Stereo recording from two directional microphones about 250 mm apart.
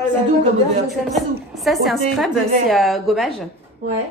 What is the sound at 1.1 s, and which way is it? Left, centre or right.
A woman's voice, centre.